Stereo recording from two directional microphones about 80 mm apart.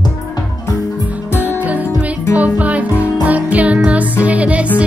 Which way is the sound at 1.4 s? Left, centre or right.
Centre.